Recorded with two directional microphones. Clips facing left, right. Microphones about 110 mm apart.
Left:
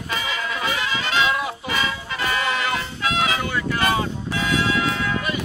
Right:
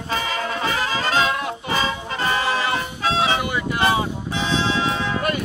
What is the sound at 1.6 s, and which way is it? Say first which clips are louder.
Music: right 2 dB; 35° right (ahead or behind).